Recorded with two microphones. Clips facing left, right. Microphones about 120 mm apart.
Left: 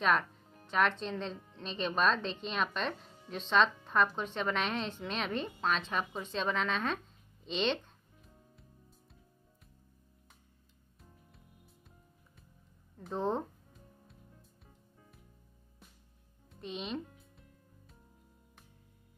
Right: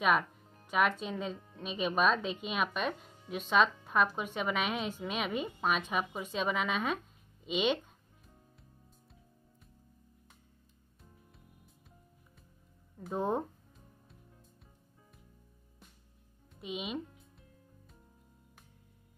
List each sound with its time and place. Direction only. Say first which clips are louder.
0.0 s speech: right 1 dB; 10° right (ahead or behind)
7.4 s music: right 2 dB; 10° right (ahead or behind)
13.0 s speech: right 1 dB; 10° right (ahead or behind)
16.6 s music: right 1 dB; 5° right (ahead or behind)